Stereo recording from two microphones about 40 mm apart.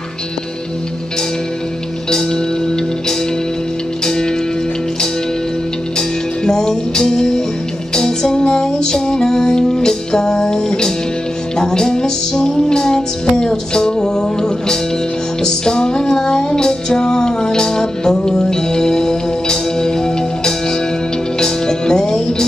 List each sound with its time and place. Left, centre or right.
4.0 s music: centre
5.9 s music: centre